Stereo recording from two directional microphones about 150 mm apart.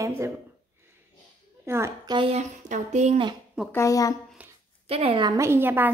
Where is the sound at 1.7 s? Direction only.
20° right (ahead or behind).